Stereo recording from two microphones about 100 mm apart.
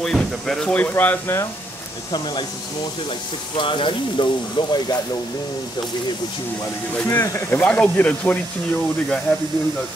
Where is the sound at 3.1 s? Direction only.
55° left (ahead or behind).